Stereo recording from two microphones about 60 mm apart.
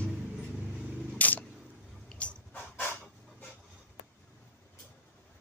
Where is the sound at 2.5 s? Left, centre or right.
Left.